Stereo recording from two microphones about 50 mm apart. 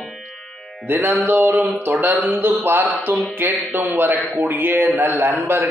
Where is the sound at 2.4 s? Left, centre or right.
Right.